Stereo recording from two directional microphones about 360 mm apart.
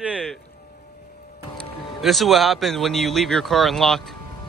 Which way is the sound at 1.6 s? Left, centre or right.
Centre.